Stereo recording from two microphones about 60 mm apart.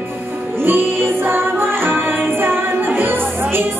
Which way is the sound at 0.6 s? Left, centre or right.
Right.